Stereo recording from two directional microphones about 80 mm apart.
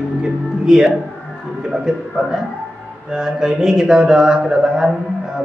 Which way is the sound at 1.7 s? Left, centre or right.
Centre.